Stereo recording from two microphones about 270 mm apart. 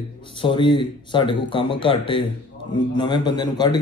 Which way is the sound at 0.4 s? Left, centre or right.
Centre.